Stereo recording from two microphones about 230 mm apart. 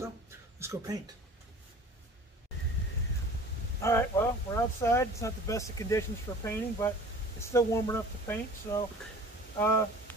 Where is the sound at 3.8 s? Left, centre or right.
Centre.